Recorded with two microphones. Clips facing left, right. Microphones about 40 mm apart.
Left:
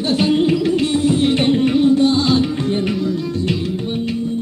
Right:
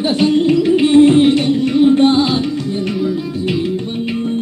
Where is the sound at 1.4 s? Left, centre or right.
Left.